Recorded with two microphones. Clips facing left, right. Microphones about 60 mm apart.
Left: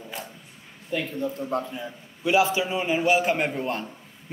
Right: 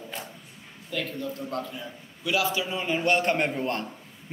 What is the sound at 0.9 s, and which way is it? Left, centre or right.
A man's voice, left.